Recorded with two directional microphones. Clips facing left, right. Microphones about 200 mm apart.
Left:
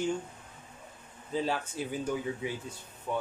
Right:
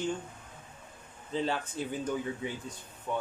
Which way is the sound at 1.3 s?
5° left (ahead or behind).